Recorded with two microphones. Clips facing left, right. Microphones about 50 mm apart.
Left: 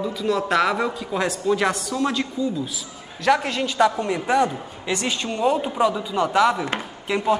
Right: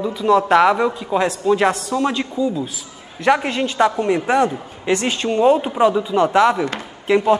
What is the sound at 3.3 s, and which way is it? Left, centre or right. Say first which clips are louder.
A man's voice: right 3 dB; centre.